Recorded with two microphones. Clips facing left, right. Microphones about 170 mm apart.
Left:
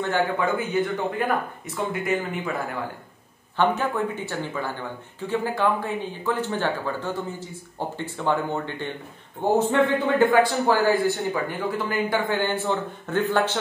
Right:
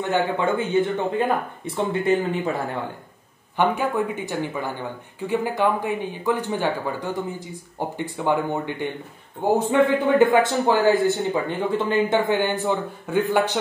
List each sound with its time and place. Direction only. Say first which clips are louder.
0.1 s speech: right 3 dB; 25° right (ahead or behind)
3.5 s speech: right 1 dB; 15° right (ahead or behind)
10.3 s speech: right 1 dB; 20° right (ahead or behind)